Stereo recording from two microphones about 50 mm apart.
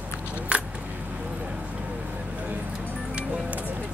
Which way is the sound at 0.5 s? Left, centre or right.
Right.